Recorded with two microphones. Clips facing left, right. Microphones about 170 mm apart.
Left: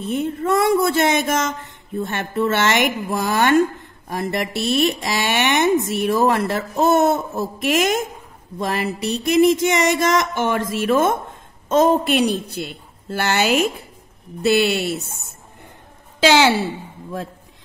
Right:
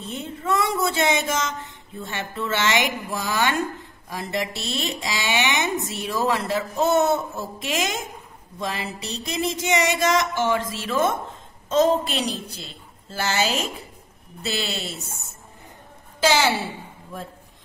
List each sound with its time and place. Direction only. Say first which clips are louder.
0.0 s speech: left 9 dB; 55° left (ahead or behind)
16.2 s a woman's voice: left 5 dB; 80° left